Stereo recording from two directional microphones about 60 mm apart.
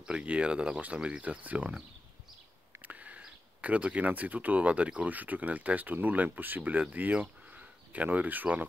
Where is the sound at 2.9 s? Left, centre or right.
Right.